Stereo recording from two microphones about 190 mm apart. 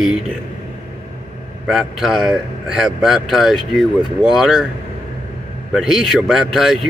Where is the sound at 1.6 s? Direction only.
Centre (ahead or behind).